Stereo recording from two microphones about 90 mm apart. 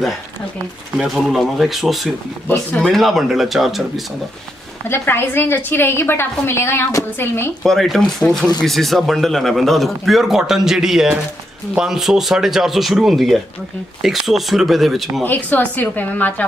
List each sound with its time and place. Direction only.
0.9 s a man's voice: centre (ahead or behind)
4.8 s a woman's voice: 25° left (ahead or behind)
7.6 s a man's voice: centre (ahead or behind)
15.2 s a woman's voice: 20° left (ahead or behind)